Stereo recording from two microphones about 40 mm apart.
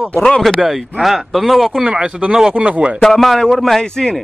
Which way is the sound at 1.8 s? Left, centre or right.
Right.